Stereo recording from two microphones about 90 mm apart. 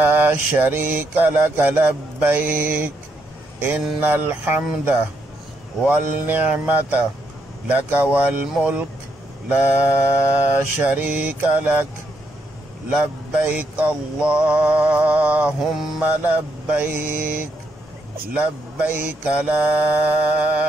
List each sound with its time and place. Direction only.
0.0 s mantra: 20° right (ahead or behind)
4.0 s mantra: 20° right (ahead or behind)
9.5 s mantra: 15° right (ahead or behind)
12.9 s mantra: 15° right (ahead or behind)